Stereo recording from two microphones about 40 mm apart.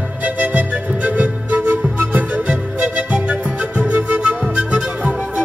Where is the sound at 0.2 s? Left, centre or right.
Right.